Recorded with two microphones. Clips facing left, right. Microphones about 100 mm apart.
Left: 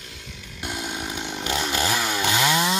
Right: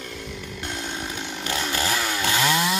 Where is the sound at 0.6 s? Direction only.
10° left (ahead or behind).